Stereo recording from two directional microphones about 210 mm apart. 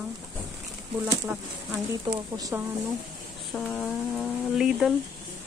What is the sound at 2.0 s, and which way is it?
Speech, 15° right (ahead or behind).